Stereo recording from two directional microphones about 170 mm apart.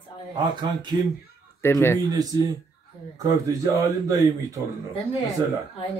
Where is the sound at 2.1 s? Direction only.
20° right (ahead or behind).